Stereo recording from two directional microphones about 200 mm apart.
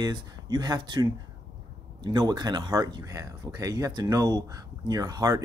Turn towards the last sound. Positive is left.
turn(degrees=-20)  # may be behind; listen again after turning